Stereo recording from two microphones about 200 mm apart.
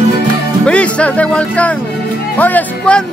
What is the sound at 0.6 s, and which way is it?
Speech, 5° left (ahead or behind).